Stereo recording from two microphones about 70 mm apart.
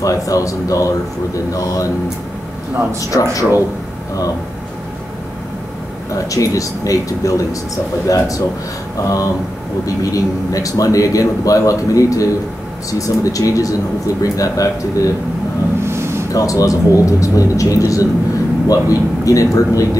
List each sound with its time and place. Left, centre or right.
0.0 s speech: left
3.0 s speech: left
6.1 s speech: left
15.8 s a sound: right
16.3 s speech: left